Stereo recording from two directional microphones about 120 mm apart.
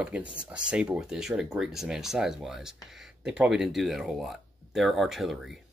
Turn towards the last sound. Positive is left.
turn(degrees=0)  # may be behind; listen again after turning